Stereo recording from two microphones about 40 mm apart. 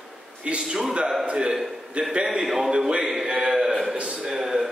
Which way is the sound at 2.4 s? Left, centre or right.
Centre.